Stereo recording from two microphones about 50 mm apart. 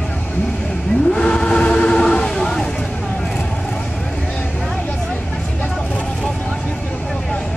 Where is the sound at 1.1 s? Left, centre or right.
Centre.